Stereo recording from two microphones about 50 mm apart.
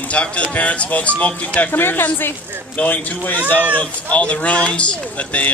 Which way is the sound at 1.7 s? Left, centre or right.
Left.